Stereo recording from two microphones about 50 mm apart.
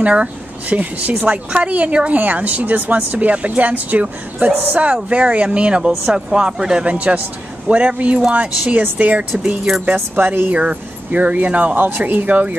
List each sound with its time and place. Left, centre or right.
0.0 s speech: right
5.9 s speech: centre; by 8.8 s right
9.9 s speech: right
10.5 s speech: right